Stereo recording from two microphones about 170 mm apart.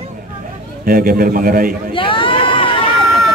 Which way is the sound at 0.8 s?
60° right (ahead or behind).